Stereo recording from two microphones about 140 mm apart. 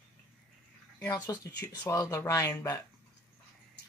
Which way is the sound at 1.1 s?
30° left (ahead or behind).